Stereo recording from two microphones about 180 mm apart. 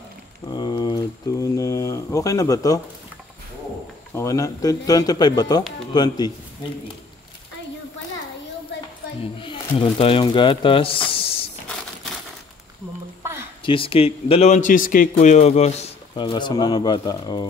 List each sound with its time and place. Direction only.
0.5 s a sound: 20° left (ahead or behind)
4.1 s a man's voice: 15° left (ahead or behind)
9.2 s speech: 30° left (ahead or behind)
13.2 s a sound: 15° right (ahead or behind)
13.7 s a man's voice: 30° left (ahead or behind)
16.2 s a man's voice: 25° left (ahead or behind)